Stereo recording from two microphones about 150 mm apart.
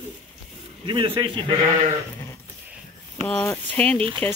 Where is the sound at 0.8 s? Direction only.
30° right (ahead or behind).